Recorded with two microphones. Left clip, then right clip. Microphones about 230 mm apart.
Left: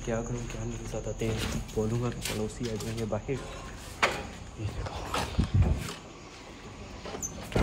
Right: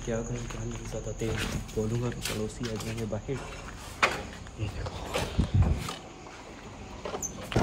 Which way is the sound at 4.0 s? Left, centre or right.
Centre.